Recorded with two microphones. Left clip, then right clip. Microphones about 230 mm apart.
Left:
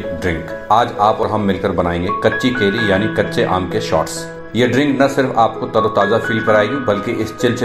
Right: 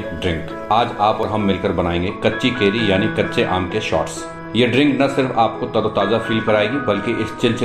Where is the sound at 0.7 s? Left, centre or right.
Centre.